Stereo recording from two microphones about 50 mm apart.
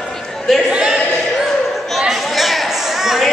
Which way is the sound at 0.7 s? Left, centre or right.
Centre.